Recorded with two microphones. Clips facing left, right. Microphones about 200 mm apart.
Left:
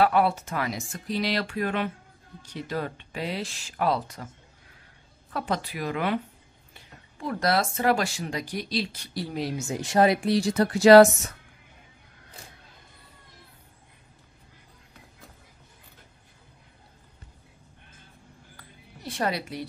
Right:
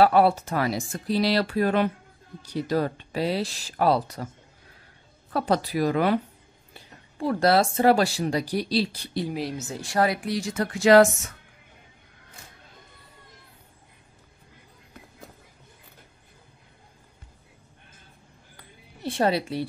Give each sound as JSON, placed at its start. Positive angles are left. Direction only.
{"t": 0.0, "sound": "speech", "side_deg": -35}
{"t": 5.3, "sound": "speech", "side_deg": -35}
{"t": 7.2, "sound": "speech", "side_deg": -30}
{"t": 9.3, "sound": "speech", "side_deg": 0}
{"t": 9.6, "sound": "speech", "side_deg": 15}
{"t": 19.0, "sound": "a woman's voice", "side_deg": -30}